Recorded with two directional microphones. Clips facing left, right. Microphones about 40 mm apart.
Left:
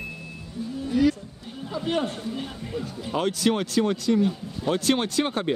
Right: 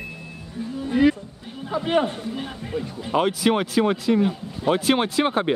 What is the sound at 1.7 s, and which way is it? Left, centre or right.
A man's voice, right.